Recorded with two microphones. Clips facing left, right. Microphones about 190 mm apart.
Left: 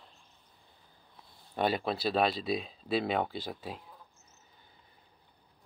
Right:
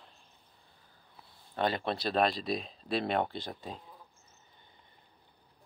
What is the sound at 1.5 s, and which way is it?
Speech, 10° left (ahead or behind).